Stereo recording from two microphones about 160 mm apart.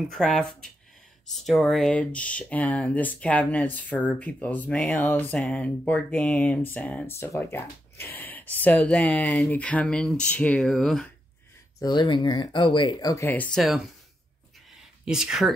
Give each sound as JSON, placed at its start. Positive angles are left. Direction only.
{"t": 0.1, "sound": "speech", "side_deg": 5}
{"t": 11.8, "sound": "speech", "side_deg": 30}
{"t": 13.3, "sound": "speech", "side_deg": 10}
{"t": 13.6, "sound": "speech", "side_deg": -5}
{"t": 15.0, "sound": "speech", "side_deg": -5}